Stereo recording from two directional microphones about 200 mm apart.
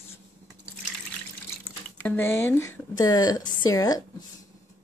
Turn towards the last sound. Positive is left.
turn(degrees=20)  # may be behind; listen again after turning